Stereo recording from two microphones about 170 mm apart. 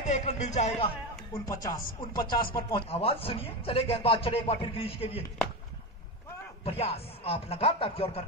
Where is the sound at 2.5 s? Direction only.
30° left (ahead or behind).